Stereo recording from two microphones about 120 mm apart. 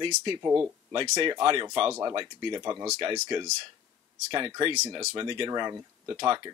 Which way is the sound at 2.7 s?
25° right (ahead or behind).